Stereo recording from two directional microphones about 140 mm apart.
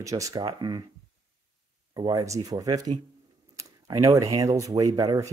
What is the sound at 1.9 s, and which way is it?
Speech, 25° right (ahead or behind).